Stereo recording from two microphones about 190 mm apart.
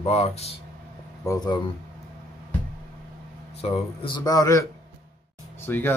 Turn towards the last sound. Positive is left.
turn(degrees=10)  # may be behind; listen again after turning